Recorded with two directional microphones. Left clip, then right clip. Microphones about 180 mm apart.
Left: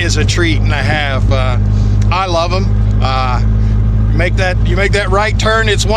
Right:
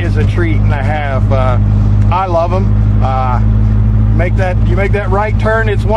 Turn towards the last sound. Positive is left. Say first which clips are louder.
# left 1 dB
turn(degrees=15)  # may be behind; listen again after turning